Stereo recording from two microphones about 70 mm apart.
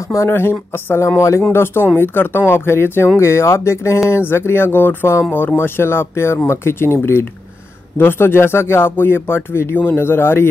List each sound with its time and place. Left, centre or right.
0.1 s speech: left